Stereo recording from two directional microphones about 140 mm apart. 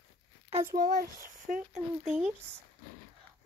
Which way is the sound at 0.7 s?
90° right.